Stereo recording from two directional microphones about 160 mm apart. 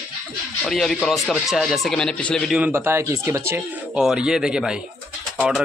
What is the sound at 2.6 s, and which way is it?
Speech, 15° right (ahead or behind).